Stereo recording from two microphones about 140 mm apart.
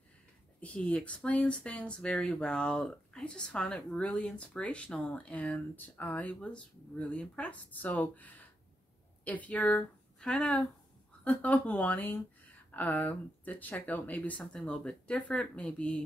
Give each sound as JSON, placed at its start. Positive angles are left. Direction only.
{"t": 0.6, "sound": "speech", "side_deg": 10}